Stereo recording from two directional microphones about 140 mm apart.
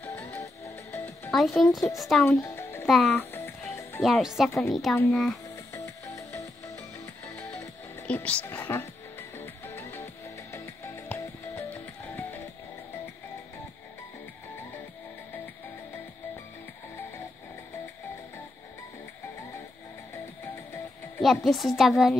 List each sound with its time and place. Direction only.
0.0 s music: 15° left (ahead or behind)
1.3 s a child's voice: centre (ahead or behind)
2.2 s music: 15° left (ahead or behind)
2.9 s a child's voice: 5° left (ahead or behind)
3.2 s music: 15° left (ahead or behind)
4.0 s a child's voice: centre (ahead or behind)
5.7 s music: 20° left (ahead or behind)
8.1 s speech: 10° left (ahead or behind)
9.8 s music: 15° left (ahead or behind)
21.5 s a child's voice: centre (ahead or behind)